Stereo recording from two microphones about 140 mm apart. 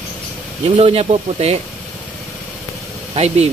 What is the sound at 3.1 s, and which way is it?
Speech, 50° right (ahead or behind).